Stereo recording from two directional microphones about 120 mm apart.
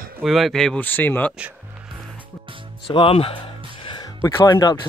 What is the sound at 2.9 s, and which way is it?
Speech, 50° left (ahead or behind).